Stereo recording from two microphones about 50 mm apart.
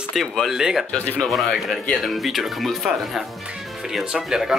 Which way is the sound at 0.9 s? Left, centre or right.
Left.